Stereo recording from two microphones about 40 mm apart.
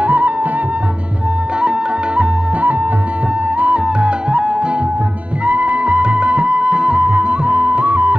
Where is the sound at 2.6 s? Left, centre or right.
Right.